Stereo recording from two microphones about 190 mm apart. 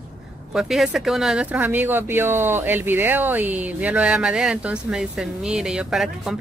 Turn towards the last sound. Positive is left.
turn(degrees=0)  # may be behind; listen again after turning